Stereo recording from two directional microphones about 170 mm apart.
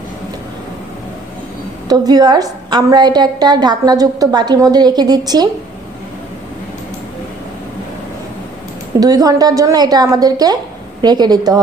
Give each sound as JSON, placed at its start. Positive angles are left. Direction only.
{"t": 1.9, "sound": "a woman's voice", "side_deg": -25}
{"t": 9.0, "sound": "a woman's voice", "side_deg": -20}